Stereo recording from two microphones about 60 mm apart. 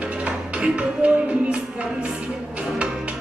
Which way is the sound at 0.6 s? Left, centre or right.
Centre.